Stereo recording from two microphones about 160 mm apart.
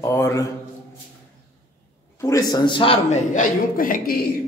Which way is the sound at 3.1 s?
55° left (ahead or behind).